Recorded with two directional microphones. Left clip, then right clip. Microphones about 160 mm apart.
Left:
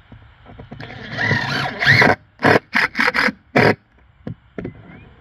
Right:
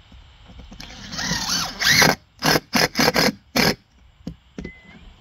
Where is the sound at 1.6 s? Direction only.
5° right (ahead or behind).